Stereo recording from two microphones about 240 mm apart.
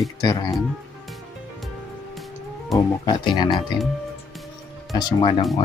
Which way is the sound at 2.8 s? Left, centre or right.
Centre.